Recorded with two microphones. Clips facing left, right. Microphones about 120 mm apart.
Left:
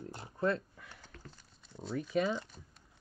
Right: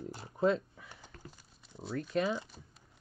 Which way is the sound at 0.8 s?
15° right (ahead or behind).